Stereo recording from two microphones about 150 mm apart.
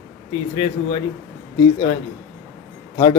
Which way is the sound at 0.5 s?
35° left (ahead or behind).